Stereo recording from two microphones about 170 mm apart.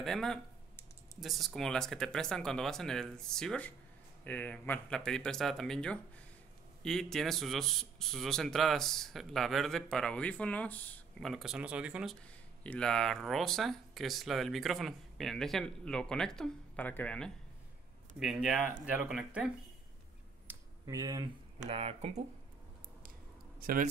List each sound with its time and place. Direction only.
0.0 s speech: centre (ahead or behind)
20.4 s a sound: 20° right (ahead or behind)
21.6 s speech: 35° right (ahead or behind)
23.6 s speech: 55° right (ahead or behind)